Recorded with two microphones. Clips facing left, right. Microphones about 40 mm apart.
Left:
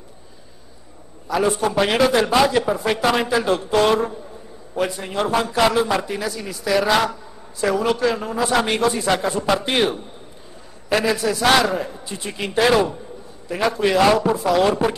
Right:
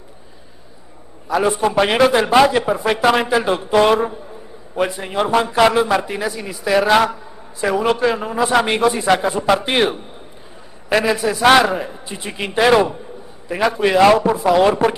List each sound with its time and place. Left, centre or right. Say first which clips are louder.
1.3 s a man's voice: right 3 dB; centre